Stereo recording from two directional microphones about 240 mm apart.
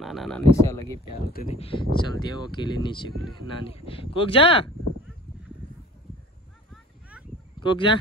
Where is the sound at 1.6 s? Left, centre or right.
Left.